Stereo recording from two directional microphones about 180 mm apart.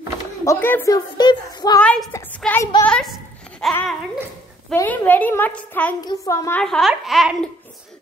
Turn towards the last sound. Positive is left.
turn(degrees=0)  # may be behind; listen again after turning